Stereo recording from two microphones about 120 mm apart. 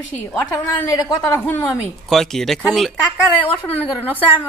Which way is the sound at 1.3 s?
20° left (ahead or behind).